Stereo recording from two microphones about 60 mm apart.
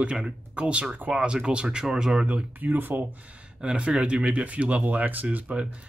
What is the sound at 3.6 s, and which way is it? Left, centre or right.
Speech, centre.